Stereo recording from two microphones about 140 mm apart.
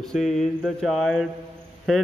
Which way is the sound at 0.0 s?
5° left (ahead or behind).